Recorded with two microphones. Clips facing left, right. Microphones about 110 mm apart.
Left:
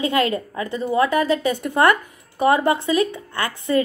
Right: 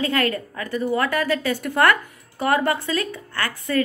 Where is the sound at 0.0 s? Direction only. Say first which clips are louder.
Left 2 dB; 20° left (ahead or behind).